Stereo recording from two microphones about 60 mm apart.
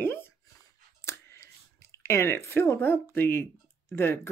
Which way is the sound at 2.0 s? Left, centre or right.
Left.